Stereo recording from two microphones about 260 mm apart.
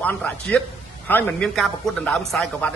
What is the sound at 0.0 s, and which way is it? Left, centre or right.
A man's voice, centre.